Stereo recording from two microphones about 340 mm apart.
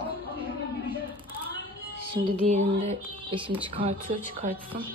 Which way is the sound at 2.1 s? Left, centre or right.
Centre.